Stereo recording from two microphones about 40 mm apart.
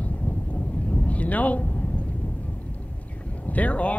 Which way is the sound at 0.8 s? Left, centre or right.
Left.